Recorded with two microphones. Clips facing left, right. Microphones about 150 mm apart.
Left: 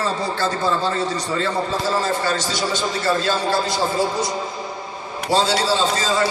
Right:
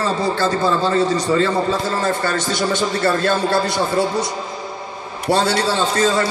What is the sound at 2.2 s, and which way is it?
A man's voice, 55° right (ahead or behind).